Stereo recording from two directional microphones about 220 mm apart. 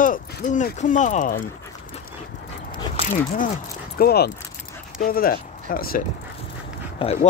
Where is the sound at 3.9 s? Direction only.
45° left (ahead or behind).